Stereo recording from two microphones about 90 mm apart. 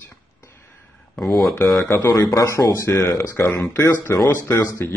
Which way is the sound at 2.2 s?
30° left (ahead or behind).